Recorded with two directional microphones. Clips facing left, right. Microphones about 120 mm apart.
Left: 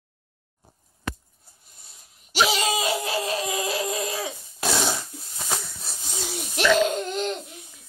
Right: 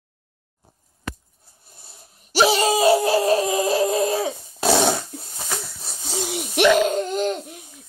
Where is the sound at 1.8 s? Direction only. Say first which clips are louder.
Right 7 dB; 35° right (ahead or behind).